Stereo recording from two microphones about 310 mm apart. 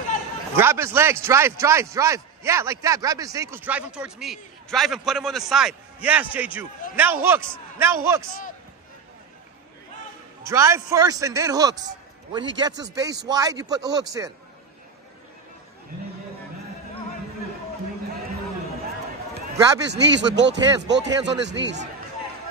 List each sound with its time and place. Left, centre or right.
0.6 s a man's voice: centre
10.4 s a man's voice: centre
19.9 s speech: right